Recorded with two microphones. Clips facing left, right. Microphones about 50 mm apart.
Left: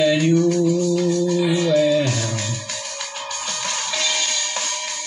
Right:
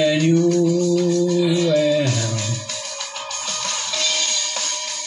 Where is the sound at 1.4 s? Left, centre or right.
Left.